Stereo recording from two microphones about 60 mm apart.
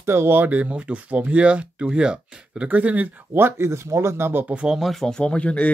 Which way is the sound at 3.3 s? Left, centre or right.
Right.